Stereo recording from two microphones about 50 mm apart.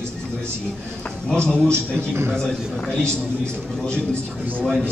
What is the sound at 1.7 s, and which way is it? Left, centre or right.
Speech, right.